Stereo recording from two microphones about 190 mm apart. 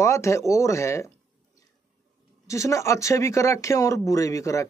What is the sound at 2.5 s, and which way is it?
Speech, 15° left (ahead or behind).